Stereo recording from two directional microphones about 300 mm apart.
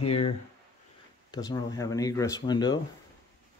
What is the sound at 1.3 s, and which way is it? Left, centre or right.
Speech, centre.